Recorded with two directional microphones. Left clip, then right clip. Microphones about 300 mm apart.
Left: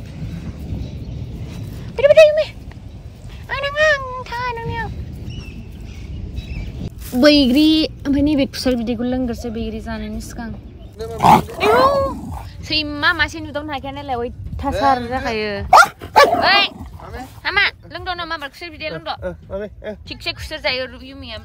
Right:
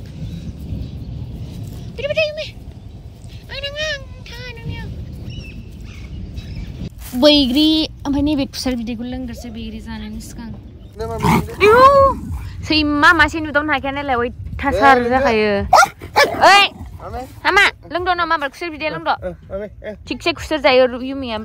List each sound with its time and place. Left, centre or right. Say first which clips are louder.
2.0 s a woman's voice: left 10 dB; centre
3.4 s cat: left 8 dB; centre
7.2 s a woman's voice: even; centre
11.1 s pig: left 5 dB; centre
11.7 s a woman's voice: right 5 dB; centre